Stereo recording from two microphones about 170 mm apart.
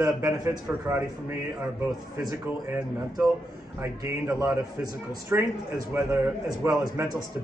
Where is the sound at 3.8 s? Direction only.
20° right (ahead or behind).